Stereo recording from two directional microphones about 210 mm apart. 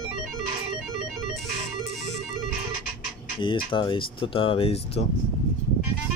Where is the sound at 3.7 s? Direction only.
25° left (ahead or behind).